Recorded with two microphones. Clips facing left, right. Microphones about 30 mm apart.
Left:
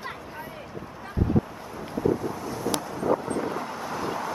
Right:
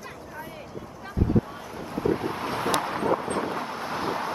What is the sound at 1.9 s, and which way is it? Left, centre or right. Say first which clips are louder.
Vehicle: even; right.